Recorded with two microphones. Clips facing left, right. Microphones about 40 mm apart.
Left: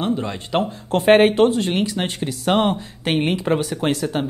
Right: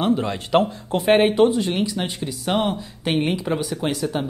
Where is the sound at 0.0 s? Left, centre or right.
Centre.